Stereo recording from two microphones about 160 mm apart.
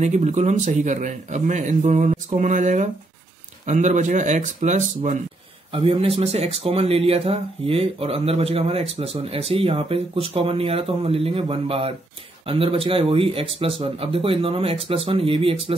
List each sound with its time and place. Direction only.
0.0 s speech: 45° right (ahead or behind)
5.7 s speech: 35° right (ahead or behind)